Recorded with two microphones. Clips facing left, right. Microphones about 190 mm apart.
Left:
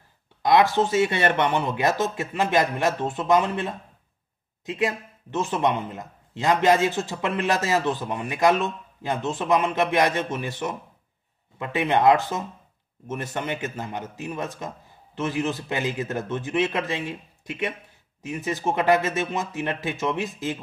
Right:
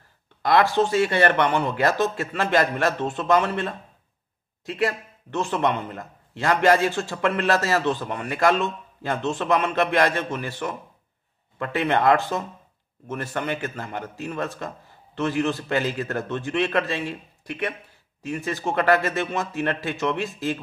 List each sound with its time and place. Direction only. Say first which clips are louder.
0.4 s speech: even; 20° left (ahead or behind)
18.2 s speech: even; 20° left (ahead or behind)